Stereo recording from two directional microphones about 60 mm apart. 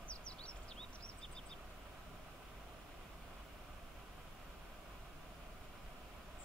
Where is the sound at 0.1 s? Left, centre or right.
Centre.